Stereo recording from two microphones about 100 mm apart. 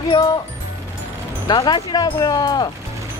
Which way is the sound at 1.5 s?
45° left (ahead or behind).